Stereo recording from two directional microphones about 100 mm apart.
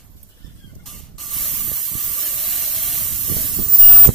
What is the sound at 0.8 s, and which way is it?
Spray, centre (ahead or behind).